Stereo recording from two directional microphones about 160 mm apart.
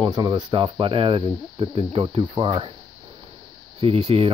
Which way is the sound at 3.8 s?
40° right (ahead or behind).